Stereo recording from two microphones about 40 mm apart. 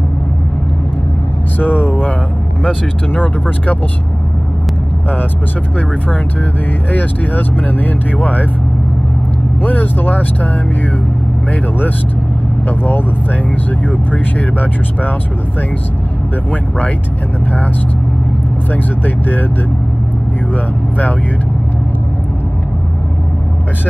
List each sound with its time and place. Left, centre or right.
1.6 s vehicle: left
2.6 s speech: left
6.9 s speech: left
9.6 s speech: left
12.6 s speech: left
18.7 s speech: left